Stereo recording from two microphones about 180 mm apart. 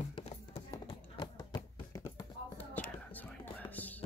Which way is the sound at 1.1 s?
20° left (ahead or behind).